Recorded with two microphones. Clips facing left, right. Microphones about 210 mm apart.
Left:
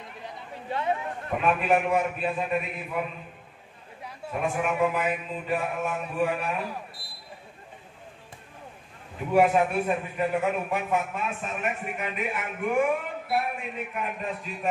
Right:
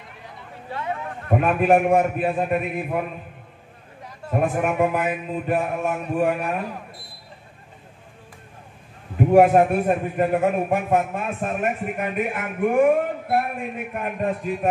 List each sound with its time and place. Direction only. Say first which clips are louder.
1.3 s a man's voice: right 6 dB; 50° right (ahead or behind)
4.3 s a man's voice: right 6 dB; 50° right (ahead or behind)
9.2 s a man's voice: right 7 dB; 50° right (ahead or behind)